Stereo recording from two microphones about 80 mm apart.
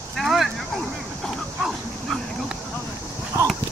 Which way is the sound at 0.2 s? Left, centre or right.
Centre.